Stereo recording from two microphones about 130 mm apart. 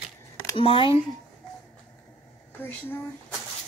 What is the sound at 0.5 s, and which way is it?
Speech, 40° left (ahead or behind).